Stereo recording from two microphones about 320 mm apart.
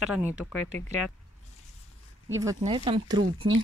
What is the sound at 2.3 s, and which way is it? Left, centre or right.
Speech, centre.